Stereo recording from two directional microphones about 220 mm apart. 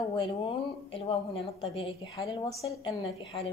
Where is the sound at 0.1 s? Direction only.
20° left (ahead or behind).